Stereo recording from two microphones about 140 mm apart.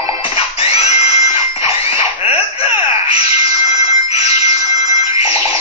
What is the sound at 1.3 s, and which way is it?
Fire alarm, 45° left (ahead or behind).